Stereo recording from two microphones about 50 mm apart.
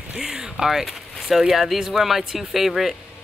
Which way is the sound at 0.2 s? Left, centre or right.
Centre.